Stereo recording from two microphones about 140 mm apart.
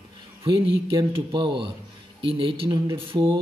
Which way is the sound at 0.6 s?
35° right (ahead or behind).